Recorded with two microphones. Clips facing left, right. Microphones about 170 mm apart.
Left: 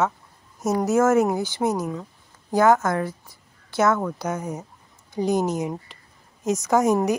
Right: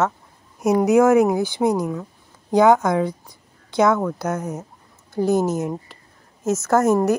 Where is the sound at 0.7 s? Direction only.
15° right (ahead or behind).